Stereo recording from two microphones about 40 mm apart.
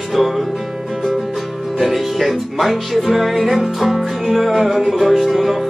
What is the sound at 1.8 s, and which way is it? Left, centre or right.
Music, centre.